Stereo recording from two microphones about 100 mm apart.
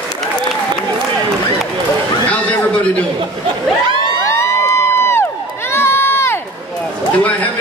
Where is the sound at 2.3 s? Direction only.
15° left (ahead or behind).